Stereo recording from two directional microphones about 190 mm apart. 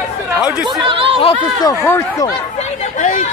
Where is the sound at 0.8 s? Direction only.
30° right (ahead or behind).